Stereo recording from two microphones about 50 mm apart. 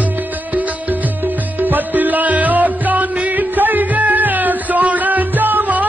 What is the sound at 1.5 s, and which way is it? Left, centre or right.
Music, right.